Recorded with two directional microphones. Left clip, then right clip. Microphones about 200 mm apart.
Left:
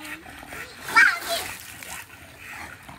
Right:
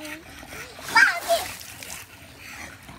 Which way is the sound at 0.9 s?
15° right (ahead or behind).